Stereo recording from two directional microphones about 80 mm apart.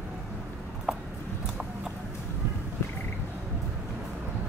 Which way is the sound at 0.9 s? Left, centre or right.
Centre.